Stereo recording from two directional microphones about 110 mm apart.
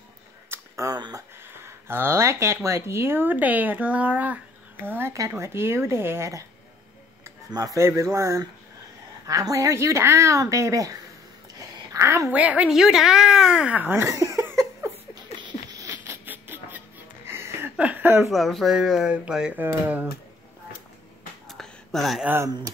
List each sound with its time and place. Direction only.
0.5 s a sound: 30° right (ahead or behind)
1.4 s speech: 20° right (ahead or behind)
7.5 s speech: 30° right (ahead or behind)
11.5 s a sound: 30° right (ahead or behind)
12.3 s speech: 15° right (ahead or behind)
14.0 s cough: 30° right (ahead or behind)
15.8 s music: 25° right (ahead or behind)
18.3 s speech: centre (ahead or behind); by 20.1 s 15° right (ahead or behind)
21.5 s a sound: centre (ahead or behind)
22.2 s speech: 20° right (ahead or behind)